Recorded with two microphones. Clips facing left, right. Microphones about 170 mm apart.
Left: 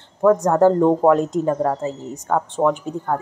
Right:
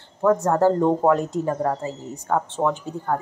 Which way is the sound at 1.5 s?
5° left (ahead or behind).